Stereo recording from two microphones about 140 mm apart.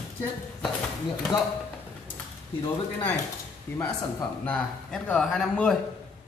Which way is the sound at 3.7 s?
20° left (ahead or behind).